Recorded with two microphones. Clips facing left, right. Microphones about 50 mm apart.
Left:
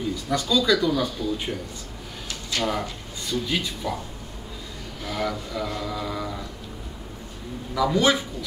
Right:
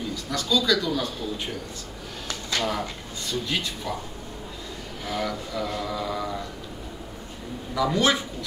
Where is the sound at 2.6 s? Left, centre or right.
Centre.